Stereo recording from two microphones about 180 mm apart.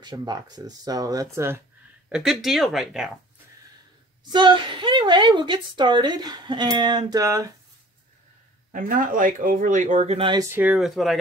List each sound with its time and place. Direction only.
0.0 s a woman's voice: 20° right (ahead or behind)
2.0 s speech: 5° right (ahead or behind)
4.2 s a woman's voice: 25° right (ahead or behind)
8.7 s speech: 50° right (ahead or behind); by 10.4 s 30° right (ahead or behind)
10.5 s speech: 5° right (ahead or behind)